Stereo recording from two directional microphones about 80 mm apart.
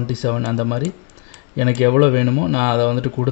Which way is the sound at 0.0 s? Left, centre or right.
Centre.